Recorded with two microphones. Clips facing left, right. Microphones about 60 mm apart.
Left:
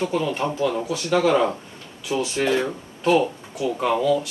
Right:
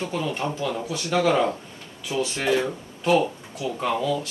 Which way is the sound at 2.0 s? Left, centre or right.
Centre.